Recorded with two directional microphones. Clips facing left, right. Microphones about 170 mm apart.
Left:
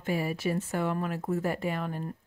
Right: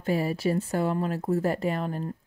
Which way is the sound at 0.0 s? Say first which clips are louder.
Right 4 dB; 35° right (ahead or behind).